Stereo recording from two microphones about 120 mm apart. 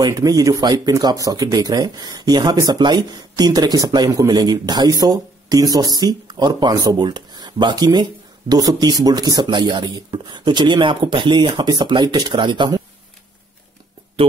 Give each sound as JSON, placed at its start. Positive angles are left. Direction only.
{"t": 0.0, "sound": "speech", "side_deg": -30}